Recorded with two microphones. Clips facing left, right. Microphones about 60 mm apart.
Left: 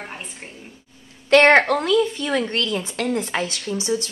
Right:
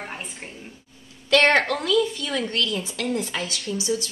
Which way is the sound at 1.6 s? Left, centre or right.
Left.